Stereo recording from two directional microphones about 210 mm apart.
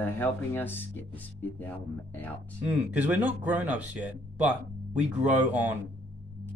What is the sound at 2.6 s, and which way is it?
Speech, 5° right (ahead or behind).